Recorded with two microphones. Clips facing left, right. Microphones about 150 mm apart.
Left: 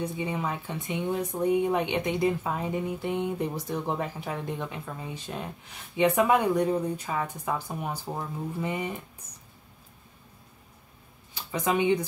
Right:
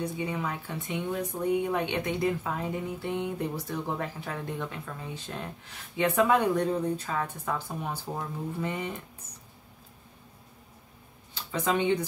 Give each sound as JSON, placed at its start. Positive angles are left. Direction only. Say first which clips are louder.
{"t": 0.0, "sound": "speech", "louder": "left 1 dB", "side_deg": 20}
{"t": 11.3, "sound": "speech", "louder": "left 1 dB", "side_deg": 15}